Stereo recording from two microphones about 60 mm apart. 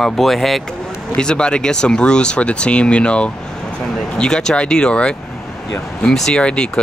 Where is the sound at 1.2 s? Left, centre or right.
Centre.